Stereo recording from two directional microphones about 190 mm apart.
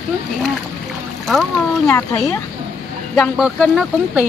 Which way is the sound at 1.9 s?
15° left (ahead or behind).